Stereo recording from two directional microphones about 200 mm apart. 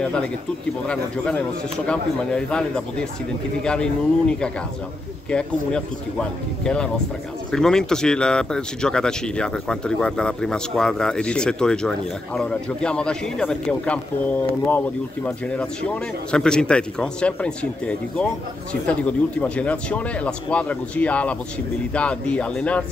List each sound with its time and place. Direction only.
0.0 s speech: 5° left (ahead or behind)